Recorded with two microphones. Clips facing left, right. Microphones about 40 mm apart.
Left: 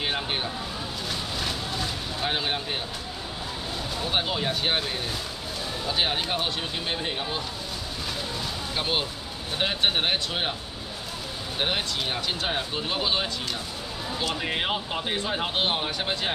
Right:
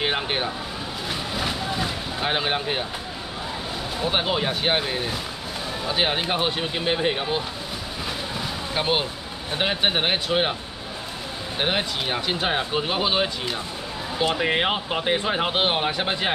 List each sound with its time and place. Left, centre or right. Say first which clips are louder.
0.0 s vehicle: right 4 dB; right
4.0 s speech: right 4 dB; centre
8.4 s boat: right 4 dB; centre
9.5 s speech: right 2 dB; centre
11.5 s speech: right 3 dB; centre